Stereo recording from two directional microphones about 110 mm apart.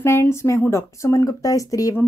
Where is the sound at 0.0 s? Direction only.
25° left (ahead or behind).